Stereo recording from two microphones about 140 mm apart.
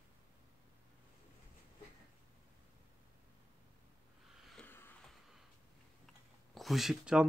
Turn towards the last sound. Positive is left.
turn(degrees=-5)  # may be behind; listen again after turning